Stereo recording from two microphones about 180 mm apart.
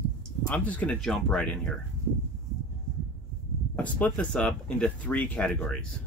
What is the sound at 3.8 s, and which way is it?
Speech, 10° left (ahead or behind).